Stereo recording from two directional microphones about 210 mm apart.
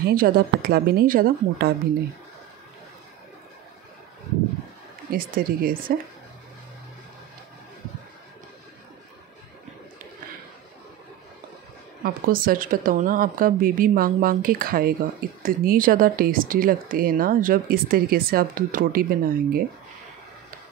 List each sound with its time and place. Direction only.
0.0 s speech: 45° right (ahead or behind)
5.1 s speech: 45° right (ahead or behind)
12.0 s speech: 45° right (ahead or behind)